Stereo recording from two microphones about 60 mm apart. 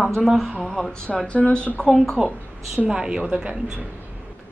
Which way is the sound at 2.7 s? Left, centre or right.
Centre.